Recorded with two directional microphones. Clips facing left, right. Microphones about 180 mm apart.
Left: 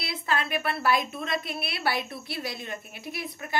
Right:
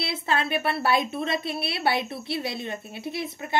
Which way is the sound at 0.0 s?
25° right (ahead or behind).